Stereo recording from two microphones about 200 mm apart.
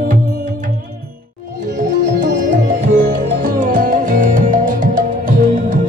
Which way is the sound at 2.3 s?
40° right (ahead or behind).